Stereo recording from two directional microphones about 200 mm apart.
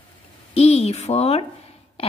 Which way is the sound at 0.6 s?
30° left (ahead or behind).